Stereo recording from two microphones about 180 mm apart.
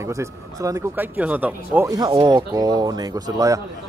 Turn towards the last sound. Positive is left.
turn(degrees=-20)  # may be behind; listen again after turning